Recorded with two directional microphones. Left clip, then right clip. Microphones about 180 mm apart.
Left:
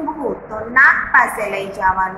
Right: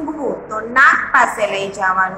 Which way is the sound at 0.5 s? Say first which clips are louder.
Even; 20° right (ahead or behind).